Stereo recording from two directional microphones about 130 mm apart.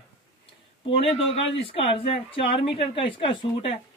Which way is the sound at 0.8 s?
45° left (ahead or behind).